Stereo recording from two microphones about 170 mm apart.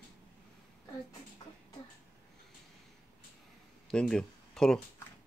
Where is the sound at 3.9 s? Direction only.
5° left (ahead or behind).